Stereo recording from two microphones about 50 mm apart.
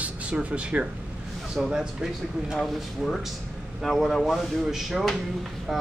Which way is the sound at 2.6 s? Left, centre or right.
Centre.